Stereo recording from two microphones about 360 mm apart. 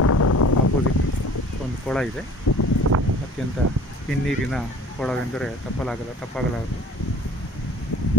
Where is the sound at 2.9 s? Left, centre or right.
Right.